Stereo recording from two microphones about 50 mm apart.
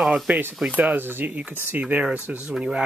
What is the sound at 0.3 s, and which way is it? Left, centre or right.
Speech, right.